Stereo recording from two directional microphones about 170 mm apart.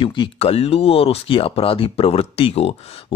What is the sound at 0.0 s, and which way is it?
Speech, 30° left (ahead or behind).